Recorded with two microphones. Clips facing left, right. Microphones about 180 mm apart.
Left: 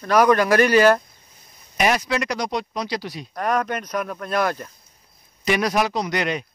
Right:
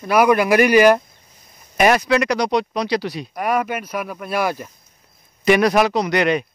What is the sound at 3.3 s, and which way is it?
Speech, 10° right (ahead or behind).